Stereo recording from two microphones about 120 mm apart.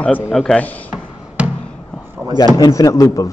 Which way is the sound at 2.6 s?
25° left (ahead or behind).